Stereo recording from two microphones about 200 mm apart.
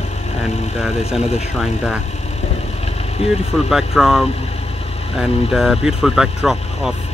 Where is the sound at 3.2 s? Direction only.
30° left (ahead or behind).